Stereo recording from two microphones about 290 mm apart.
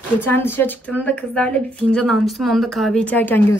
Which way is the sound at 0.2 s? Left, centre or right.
Centre.